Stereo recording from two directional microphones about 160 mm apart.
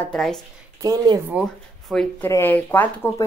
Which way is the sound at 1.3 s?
5° right (ahead or behind).